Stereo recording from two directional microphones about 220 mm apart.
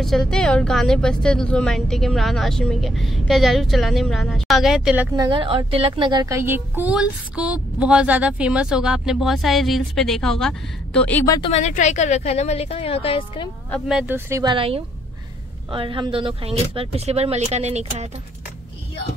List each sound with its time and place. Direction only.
0.0 s a woman's voice: centre (ahead or behind)
11.5 s a woman's voice: 30° left (ahead or behind)
13.7 s speech: centre (ahead or behind); by 18.0 s 30° right (ahead or behind)